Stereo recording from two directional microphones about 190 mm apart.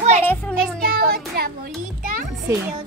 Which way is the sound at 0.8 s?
50° right (ahead or behind).